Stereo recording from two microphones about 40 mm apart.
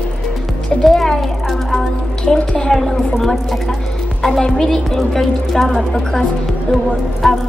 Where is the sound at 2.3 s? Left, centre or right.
Centre.